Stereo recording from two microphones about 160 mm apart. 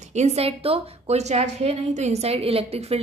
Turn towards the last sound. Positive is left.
turn(degrees=-40)  # may be behind; listen again after turning